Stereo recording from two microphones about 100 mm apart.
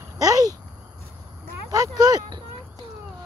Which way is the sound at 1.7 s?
40° right (ahead or behind).